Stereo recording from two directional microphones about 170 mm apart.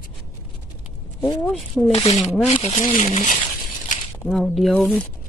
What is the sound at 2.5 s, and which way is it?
Speech, 35° left (ahead or behind).